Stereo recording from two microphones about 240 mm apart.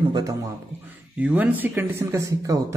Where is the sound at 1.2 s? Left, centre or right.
Centre.